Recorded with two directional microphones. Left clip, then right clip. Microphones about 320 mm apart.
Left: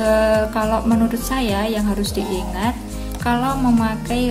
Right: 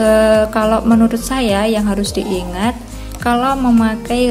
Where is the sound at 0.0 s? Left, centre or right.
Centre.